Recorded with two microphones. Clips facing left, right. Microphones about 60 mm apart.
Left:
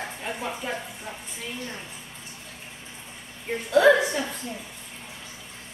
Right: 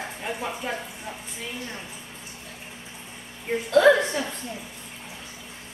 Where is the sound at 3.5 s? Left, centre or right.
Centre.